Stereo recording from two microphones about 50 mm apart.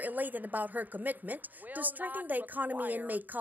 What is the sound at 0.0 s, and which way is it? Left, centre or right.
A woman's voice, right.